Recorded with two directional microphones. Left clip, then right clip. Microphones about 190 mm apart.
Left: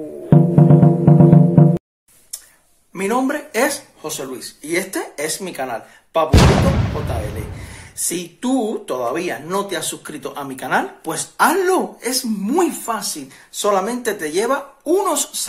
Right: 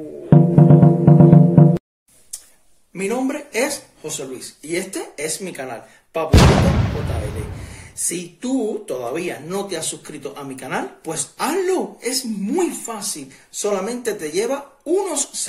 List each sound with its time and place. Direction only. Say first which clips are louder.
0.3 s music: even; centre (ahead or behind)
2.9 s speech: left 3 dB; centre (ahead or behind)